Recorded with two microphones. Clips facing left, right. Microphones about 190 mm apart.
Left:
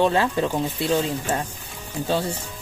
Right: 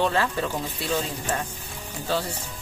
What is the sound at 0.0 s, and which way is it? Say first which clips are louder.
Speech: left 4 dB; 20° left (ahead or behind).